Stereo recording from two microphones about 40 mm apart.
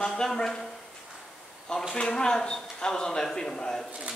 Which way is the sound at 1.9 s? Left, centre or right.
Centre.